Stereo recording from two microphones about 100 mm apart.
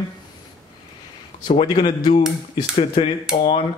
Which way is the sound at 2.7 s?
65° left (ahead or behind).